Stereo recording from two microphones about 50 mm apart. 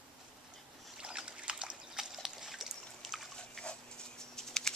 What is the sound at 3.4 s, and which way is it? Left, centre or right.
Dog, centre.